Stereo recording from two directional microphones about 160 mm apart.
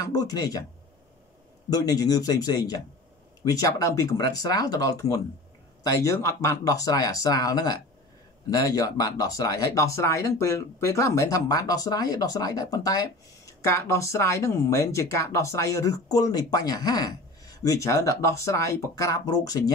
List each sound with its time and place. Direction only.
0.0 s speech: 25° left (ahead or behind)
1.7 s speech: 25° left (ahead or behind)